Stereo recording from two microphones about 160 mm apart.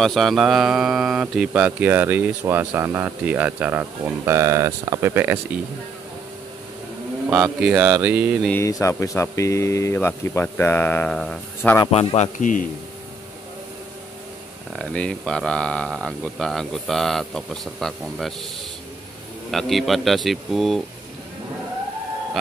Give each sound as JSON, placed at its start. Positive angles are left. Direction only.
{"t": 0.0, "sound": "speech", "side_deg": 0}
{"t": 7.2, "sound": "speech", "side_deg": -10}
{"t": 8.5, "sound": "speech", "side_deg": 15}
{"t": 11.9, "sound": "a man's voice", "side_deg": 40}
{"t": 12.4, "sound": "speech", "side_deg": 55}
{"t": 14.8, "sound": "speech", "side_deg": 5}
{"t": 19.5, "sound": "speech", "side_deg": 0}